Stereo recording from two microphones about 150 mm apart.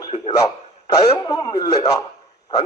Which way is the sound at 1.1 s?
20° left (ahead or behind).